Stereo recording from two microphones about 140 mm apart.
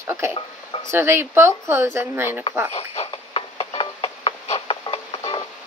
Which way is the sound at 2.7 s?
45° left (ahead or behind).